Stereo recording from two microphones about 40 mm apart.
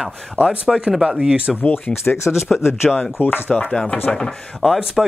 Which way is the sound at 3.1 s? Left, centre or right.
Left.